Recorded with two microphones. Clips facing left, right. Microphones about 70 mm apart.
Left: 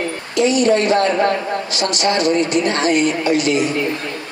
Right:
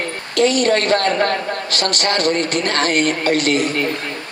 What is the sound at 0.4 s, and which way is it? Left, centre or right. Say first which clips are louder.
A man's voice: left 1 dB; right.